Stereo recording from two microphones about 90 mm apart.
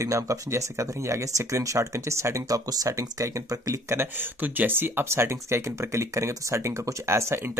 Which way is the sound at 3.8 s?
25° right (ahead or behind).